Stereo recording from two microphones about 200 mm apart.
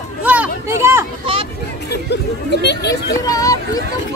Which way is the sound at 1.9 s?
55° left (ahead or behind).